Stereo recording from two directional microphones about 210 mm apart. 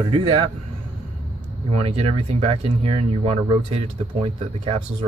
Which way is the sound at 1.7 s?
30° right (ahead or behind).